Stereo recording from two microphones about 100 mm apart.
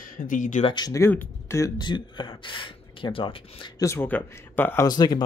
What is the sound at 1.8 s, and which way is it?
Speech, 50° left (ahead or behind).